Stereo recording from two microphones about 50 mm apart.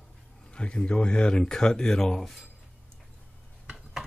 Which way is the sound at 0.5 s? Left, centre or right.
Left.